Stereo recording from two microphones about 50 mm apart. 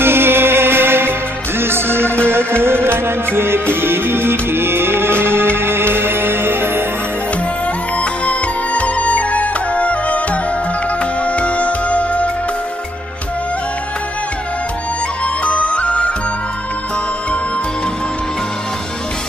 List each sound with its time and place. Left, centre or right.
0.0 s music: right
8.0 s music: left
15.4 s music: left